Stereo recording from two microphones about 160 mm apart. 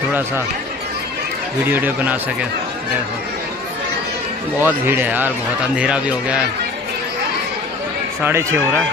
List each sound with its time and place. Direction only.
1.7 s speech: 10° right (ahead or behind)
4.6 s speech: 15° right (ahead or behind)
8.2 s speech: 15° right (ahead or behind)